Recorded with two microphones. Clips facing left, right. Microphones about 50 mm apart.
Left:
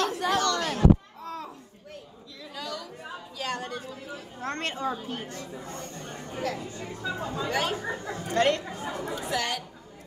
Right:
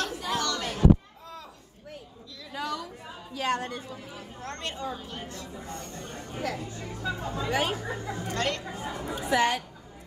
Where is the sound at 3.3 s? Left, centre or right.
Right.